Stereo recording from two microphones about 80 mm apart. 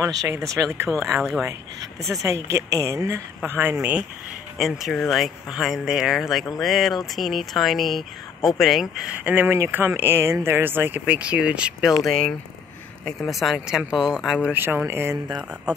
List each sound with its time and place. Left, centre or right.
0.3 s speech: right
0.8 s speech: centre
2.2 s speech: right
3.4 s speech: right
4.6 s speech: centre
9.1 s speech: centre
11.9 s speech: centre
14.5 s speech: right